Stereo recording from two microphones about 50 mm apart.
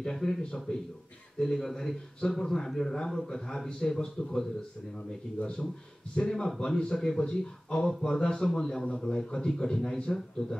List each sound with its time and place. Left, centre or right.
0.0 s a man's voice: centre